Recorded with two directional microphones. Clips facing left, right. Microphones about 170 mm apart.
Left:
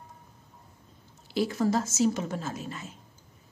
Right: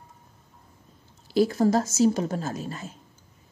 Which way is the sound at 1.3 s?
40° right (ahead or behind).